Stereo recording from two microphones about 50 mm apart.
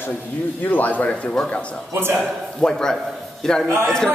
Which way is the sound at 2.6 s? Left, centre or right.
Centre.